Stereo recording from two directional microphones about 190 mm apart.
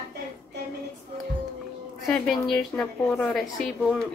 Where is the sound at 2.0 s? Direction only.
Centre (ahead or behind).